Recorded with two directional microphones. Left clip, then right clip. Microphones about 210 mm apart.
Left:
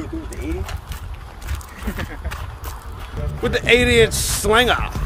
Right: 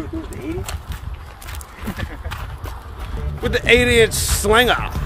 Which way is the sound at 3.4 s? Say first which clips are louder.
Right 1 dB; centre (ahead or behind).